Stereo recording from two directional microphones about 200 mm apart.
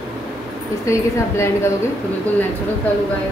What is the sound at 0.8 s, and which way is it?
Speech, 15° left (ahead or behind).